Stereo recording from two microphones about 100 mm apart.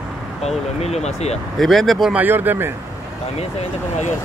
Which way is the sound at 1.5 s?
Centre (ahead or behind).